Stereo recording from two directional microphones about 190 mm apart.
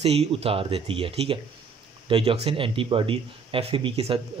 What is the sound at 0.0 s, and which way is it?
Speech, 30° right (ahead or behind).